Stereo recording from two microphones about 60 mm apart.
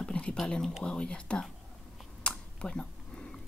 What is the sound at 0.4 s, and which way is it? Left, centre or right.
Speech, centre.